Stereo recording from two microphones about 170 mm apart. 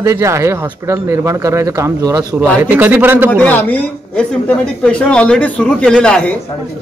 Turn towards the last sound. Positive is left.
turn(degrees=5)  # may be behind; listen again after turning